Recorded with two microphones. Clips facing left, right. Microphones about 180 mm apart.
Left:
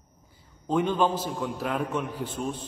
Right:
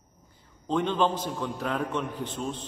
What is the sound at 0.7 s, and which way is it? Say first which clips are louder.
A man's voice: left 1 dB; 10° left (ahead or behind).